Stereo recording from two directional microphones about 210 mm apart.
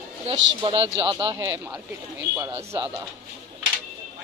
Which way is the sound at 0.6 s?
25° right (ahead or behind).